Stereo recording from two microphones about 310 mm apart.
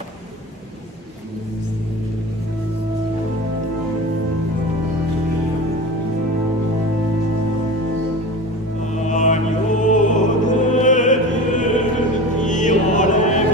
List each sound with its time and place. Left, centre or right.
8.9 s music: left